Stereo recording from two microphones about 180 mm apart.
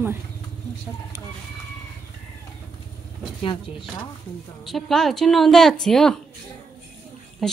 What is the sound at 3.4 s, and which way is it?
Speech, 25° left (ahead or behind).